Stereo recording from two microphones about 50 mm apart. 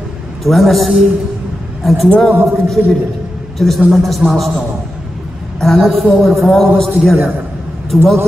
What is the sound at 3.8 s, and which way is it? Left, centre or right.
Speech, centre.